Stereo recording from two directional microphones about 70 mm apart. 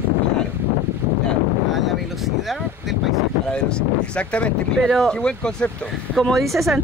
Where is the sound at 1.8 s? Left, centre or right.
Centre.